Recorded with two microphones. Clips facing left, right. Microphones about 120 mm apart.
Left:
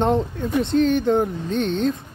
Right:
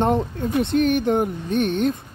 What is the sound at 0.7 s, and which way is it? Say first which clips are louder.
Speech: left 2 dB; 65° right (ahead or behind).